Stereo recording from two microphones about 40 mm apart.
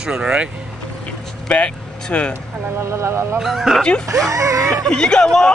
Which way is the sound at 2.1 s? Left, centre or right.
Left.